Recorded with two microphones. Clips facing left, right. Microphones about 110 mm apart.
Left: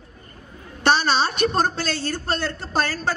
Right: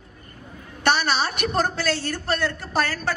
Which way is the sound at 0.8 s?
25° left (ahead or behind).